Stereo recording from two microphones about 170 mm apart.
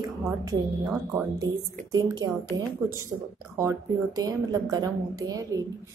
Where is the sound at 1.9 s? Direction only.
20° right (ahead or behind).